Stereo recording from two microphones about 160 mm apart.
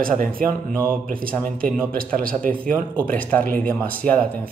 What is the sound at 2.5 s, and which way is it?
Speech, 10° left (ahead or behind).